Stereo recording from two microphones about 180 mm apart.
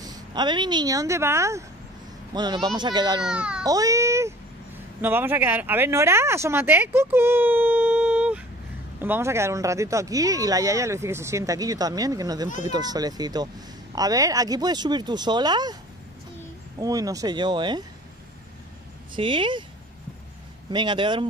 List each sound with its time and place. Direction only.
0.0 s speech: 25° right (ahead or behind)
3.3 s speech: 5° right (ahead or behind)
3.6 s speech: 20° right (ahead or behind)
19.1 s speech: 30° right (ahead or behind)
20.7 s speech: 25° right (ahead or behind)